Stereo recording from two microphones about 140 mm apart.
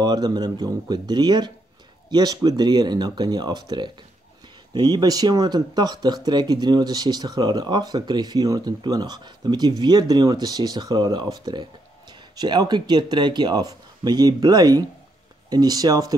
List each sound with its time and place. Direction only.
0.0 s speech: 30° right (ahead or behind)